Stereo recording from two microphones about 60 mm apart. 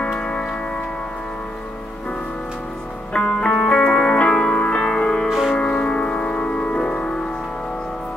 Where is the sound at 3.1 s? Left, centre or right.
Centre.